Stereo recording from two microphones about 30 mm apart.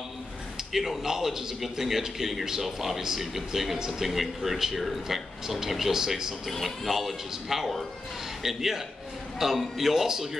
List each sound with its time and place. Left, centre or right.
0.7 s speech: centre
6.6 s speech: centre